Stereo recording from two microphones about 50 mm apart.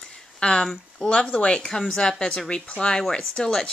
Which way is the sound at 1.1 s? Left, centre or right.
Left.